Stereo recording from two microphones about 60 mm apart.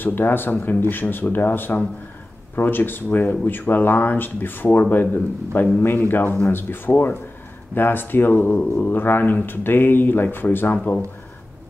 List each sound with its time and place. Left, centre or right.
0.0 s speech: left